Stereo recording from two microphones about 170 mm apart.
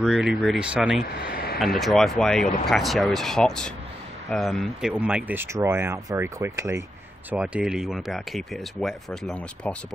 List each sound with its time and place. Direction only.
0.0 s speech: 5° right (ahead or behind)
1.3 s a sound: 65° left (ahead or behind)
1.8 s speech: centre (ahead or behind); by 6.8 s 15° right (ahead or behind)
7.2 s speech: 5° right (ahead or behind)